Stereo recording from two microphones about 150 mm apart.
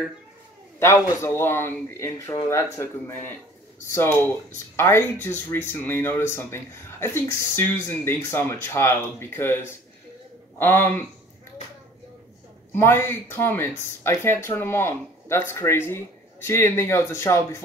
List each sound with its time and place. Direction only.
0.7 s speech: 20° left (ahead or behind)
12.7 s speech: 15° left (ahead or behind)